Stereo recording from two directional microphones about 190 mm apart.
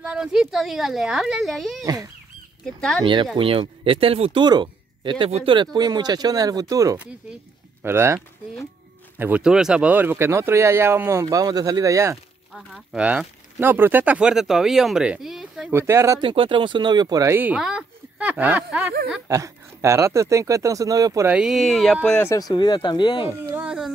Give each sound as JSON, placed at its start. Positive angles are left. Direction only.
{"t": 0.0, "sound": "speech", "side_deg": -5}
{"t": 3.3, "sound": "speech", "side_deg": -30}
{"t": 9.2, "sound": "speech", "side_deg": -5}
{"t": 12.5, "sound": "speech", "side_deg": -5}
{"t": 15.8, "sound": "speech", "side_deg": -15}
{"t": 16.3, "sound": "speech", "side_deg": -25}
{"t": 21.4, "sound": "speech", "side_deg": 0}
{"t": 22.3, "sound": "speech", "side_deg": 20}
{"t": 23.5, "sound": "speech", "side_deg": -5}